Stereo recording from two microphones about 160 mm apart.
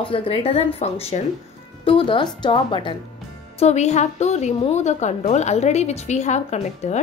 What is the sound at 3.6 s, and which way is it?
A woman's voice, 45° left (ahead or behind).